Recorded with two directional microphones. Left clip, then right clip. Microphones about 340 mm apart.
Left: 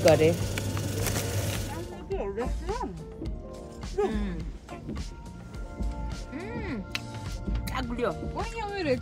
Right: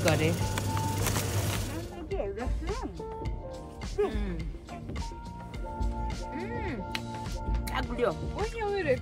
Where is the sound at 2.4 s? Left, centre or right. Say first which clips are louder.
Left 4 dB; centre.